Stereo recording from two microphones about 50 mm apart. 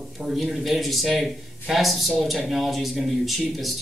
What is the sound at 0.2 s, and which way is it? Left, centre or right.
Speech, centre.